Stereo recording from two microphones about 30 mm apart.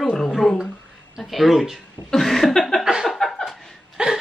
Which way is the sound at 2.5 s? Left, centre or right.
Left.